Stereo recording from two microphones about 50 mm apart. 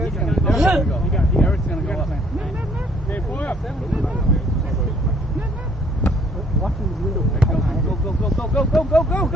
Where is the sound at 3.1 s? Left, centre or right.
Left.